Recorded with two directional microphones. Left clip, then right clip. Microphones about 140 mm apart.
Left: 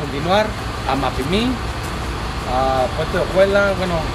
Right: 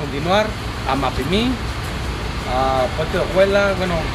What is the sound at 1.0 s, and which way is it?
Speech, 10° left (ahead or behind).